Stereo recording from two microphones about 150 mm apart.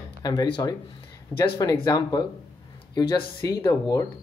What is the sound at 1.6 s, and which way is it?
Speech, 25° left (ahead or behind).